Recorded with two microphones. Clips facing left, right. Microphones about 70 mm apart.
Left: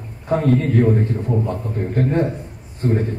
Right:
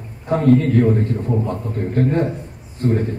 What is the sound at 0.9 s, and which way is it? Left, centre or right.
A man's voice, centre.